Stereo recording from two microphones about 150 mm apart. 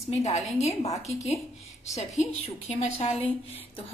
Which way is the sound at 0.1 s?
50° left (ahead or behind).